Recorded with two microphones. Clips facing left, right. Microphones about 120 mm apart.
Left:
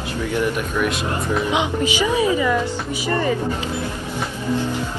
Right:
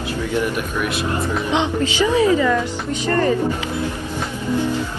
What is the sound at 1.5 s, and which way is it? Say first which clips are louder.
A woman's voice: right 1 dB; 15° left (ahead or behind).